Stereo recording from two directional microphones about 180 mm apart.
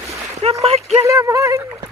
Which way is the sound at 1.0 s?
15° right (ahead or behind).